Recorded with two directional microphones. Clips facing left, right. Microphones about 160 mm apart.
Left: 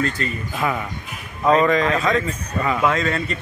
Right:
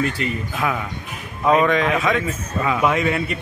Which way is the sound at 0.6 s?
Centre (ahead or behind).